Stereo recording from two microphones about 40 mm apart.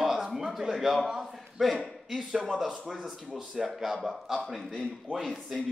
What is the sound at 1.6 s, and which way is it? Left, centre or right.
A man's voice, centre.